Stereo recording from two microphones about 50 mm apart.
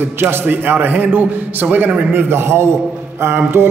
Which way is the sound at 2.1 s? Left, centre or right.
Right.